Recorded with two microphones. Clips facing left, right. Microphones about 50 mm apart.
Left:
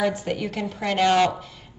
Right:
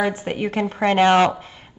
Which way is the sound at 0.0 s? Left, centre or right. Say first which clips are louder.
Right 2 dB; right.